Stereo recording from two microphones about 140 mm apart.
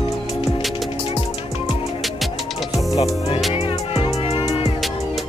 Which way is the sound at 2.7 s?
45° left (ahead or behind).